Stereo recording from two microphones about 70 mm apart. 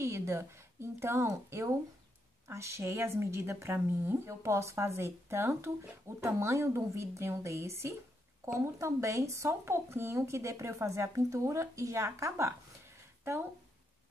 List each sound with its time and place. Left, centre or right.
0.0 s a woman's voice: right